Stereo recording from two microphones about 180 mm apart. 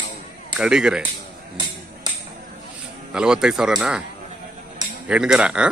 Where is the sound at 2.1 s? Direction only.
25° right (ahead or behind).